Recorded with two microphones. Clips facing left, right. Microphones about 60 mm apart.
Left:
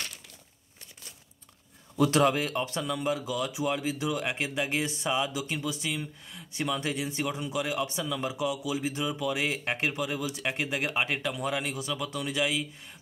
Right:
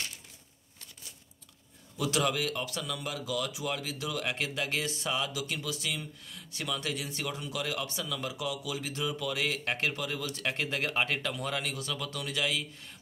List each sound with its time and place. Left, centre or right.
2.0 s speech: left; by 12.6 s centre